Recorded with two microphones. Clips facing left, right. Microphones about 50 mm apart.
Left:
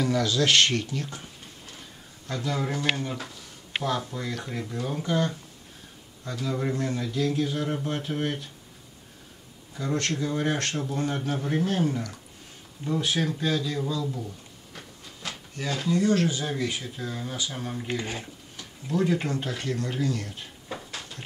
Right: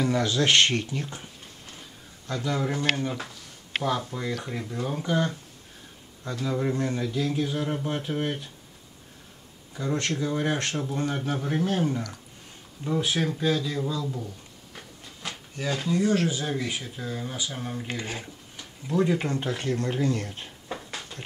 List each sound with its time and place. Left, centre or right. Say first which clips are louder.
0.0 s speech: even; right
2.2 s speech: right 1 dB; centre
2.7 s speech: right 1 dB; right
3.8 s speech: right 1 dB; centre
6.7 s speech: right 1 dB; right
10.1 s speech: even; centre
18.6 s speech: right 1 dB; centre
19.2 s speech: right 2 dB; right